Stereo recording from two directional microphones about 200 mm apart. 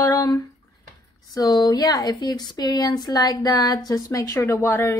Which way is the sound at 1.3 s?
20° left (ahead or behind).